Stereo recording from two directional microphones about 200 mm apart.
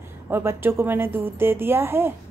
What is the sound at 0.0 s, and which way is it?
A woman's voice, 10° right (ahead or behind).